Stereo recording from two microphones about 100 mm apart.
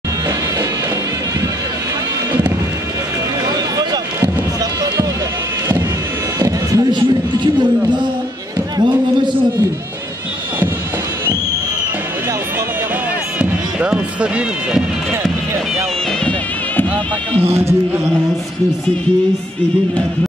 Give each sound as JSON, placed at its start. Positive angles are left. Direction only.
{"t": 6.4, "sound": "a sound", "side_deg": -40}
{"t": 8.7, "sound": "basketball bounce", "side_deg": -50}
{"t": 13.4, "sound": "run", "side_deg": -10}
{"t": 17.5, "sound": "speech", "side_deg": -25}